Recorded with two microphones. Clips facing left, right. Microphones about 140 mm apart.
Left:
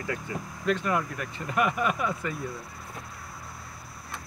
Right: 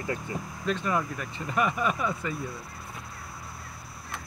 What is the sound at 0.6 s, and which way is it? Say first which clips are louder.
Speech: left 2 dB; 5° left (ahead or behind).